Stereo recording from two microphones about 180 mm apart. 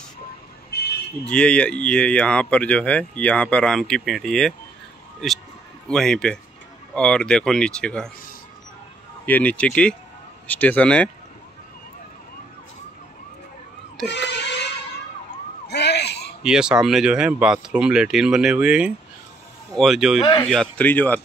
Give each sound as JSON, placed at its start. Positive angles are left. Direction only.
{"t": 1.2, "sound": "speech", "side_deg": 5}
{"t": 5.9, "sound": "speech", "side_deg": 5}
{"t": 9.2, "sound": "speech", "side_deg": 10}
{"t": 14.1, "sound": "a sound", "side_deg": 70}
{"t": 15.7, "sound": "a sound", "side_deg": 70}
{"t": 16.4, "sound": "speech", "side_deg": -5}